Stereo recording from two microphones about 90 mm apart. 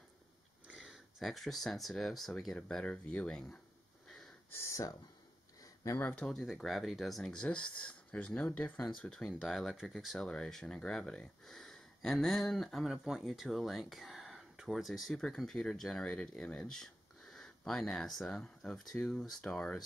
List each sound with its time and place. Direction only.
0.7 s speech: 10° right (ahead or behind)
4.6 s speech: 35° left (ahead or behind)
6.0 s speech: 10° left (ahead or behind)
6.4 s speech: centre (ahead or behind)